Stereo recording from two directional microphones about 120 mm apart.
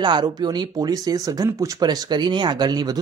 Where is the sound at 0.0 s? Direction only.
35° right (ahead or behind).